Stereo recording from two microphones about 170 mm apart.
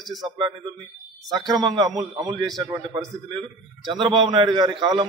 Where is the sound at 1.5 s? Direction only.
25° right (ahead or behind).